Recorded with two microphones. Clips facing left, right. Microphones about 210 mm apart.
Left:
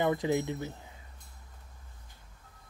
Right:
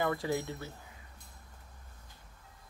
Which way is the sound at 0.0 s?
20° left (ahead or behind).